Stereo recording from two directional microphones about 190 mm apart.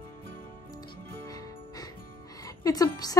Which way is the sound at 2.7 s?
20° left (ahead or behind).